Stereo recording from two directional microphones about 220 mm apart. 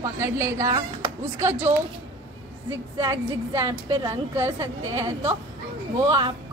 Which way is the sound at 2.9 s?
15° right (ahead or behind).